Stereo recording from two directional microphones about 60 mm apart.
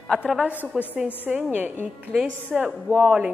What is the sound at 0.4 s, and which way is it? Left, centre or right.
A woman's voice, right.